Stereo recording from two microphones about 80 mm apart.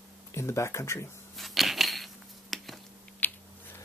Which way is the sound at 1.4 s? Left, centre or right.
Centre.